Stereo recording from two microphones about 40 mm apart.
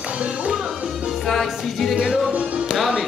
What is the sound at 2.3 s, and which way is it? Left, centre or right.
Music, right.